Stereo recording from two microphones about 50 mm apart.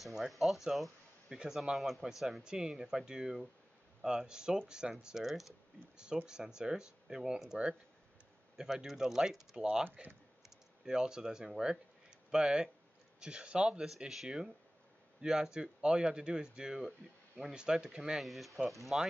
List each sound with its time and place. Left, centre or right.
0.0 s speech: centre
8.5 s speech: centre
18.2 s speech: centre